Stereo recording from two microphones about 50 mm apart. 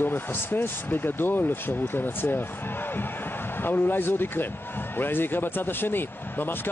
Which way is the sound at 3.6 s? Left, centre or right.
Left.